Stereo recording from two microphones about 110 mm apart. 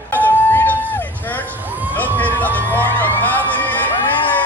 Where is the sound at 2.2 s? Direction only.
15° left (ahead or behind).